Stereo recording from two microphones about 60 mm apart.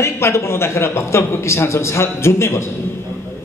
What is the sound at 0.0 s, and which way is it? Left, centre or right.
A man's voice, left.